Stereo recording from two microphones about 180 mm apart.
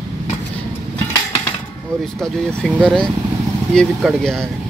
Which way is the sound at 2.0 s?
5° left (ahead or behind).